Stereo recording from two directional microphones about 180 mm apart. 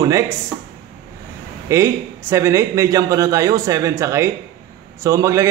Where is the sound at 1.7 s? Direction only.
15° right (ahead or behind).